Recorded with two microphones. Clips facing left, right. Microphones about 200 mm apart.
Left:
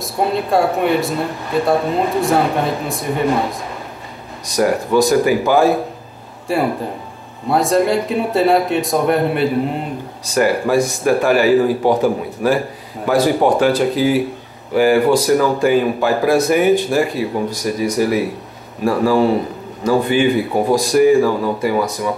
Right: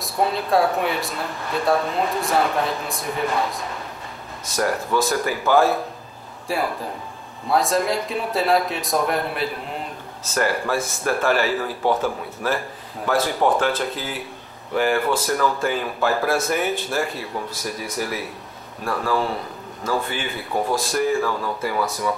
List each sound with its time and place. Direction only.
0.0 s speech: centre (ahead or behind)
4.5 s speech: 15° left (ahead or behind)
6.4 s speech: centre (ahead or behind)
10.2 s speech: 15° left (ahead or behind)